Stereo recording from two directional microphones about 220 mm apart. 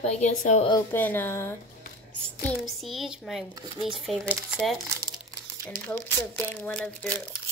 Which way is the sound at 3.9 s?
Centre (ahead or behind).